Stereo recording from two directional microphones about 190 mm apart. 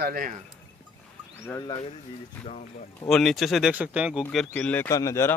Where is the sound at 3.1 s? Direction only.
Centre (ahead or behind).